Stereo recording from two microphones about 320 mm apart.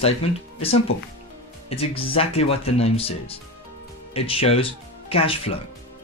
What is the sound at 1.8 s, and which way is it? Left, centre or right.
Speech, centre.